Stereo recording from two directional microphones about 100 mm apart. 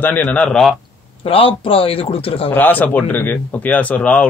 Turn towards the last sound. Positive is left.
turn(degrees=10)  # may be behind; listen again after turning